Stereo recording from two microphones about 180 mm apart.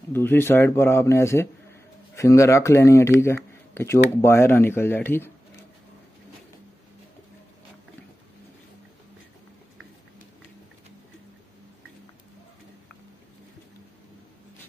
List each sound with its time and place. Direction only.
0.1 s speech: 10° left (ahead or behind)